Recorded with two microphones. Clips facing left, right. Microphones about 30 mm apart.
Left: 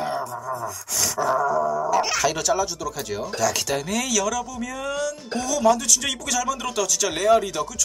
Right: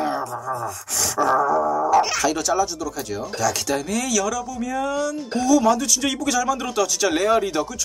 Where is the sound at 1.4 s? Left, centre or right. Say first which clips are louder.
Right 2 dB; right.